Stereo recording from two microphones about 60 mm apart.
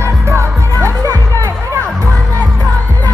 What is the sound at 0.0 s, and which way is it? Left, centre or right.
Music, right.